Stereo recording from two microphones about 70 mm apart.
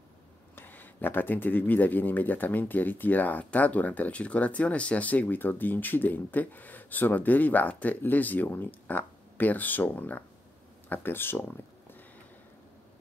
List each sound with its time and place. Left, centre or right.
0.6 s speech: left